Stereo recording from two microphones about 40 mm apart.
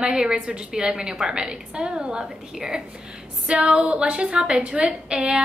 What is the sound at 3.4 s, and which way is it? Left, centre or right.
Music, right.